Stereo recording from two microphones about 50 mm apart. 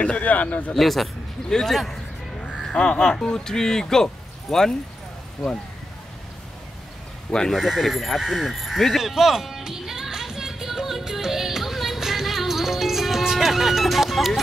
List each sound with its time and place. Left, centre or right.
0.0 s a man's voice: left
0.7 s speech: centre
2.4 s speech: centre
5.4 s speech: centre
7.5 s a sound: centre